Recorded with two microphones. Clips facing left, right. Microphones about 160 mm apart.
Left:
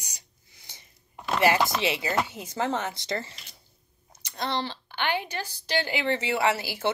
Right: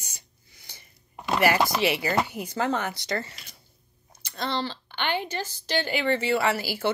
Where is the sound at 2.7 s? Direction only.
25° left (ahead or behind).